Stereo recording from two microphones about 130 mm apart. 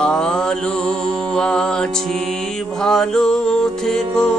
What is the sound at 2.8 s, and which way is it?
Music, 5° left (ahead or behind).